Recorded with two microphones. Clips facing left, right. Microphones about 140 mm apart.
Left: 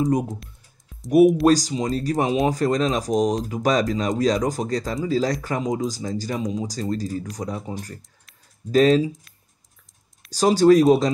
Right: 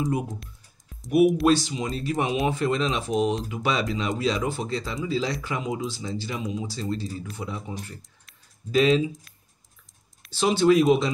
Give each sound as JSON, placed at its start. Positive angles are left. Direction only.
{"t": 0.3, "sound": "music", "side_deg": 0}
{"t": 1.1, "sound": "speech", "side_deg": 40}
{"t": 8.3, "sound": "a sound", "side_deg": 0}
{"t": 8.7, "sound": "speech", "side_deg": 40}
{"t": 10.3, "sound": "speech", "side_deg": 40}